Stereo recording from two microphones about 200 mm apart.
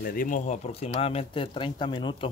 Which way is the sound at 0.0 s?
45° left (ahead or behind).